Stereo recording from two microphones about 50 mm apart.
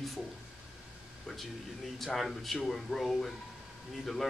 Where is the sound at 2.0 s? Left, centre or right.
Centre.